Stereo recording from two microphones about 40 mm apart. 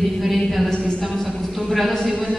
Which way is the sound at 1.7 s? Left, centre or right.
Centre.